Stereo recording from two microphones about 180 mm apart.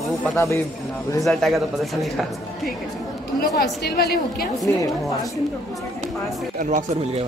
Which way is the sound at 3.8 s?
60° left (ahead or behind).